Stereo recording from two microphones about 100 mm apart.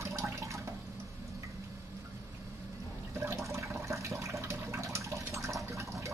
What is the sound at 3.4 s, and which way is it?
Toilet flush, 30° right (ahead or behind).